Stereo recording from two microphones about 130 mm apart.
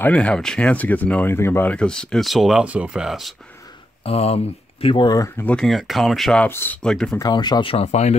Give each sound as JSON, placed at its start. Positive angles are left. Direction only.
{"t": 0.0, "sound": "speech", "side_deg": 10}
{"t": 4.0, "sound": "speech", "side_deg": 50}
{"t": 4.8, "sound": "speech", "side_deg": 35}
{"t": 5.4, "sound": "speech", "side_deg": 5}
{"t": 6.4, "sound": "speech", "side_deg": 15}
{"t": 7.2, "sound": "speech", "side_deg": 30}
{"t": 7.7, "sound": "speech", "side_deg": 55}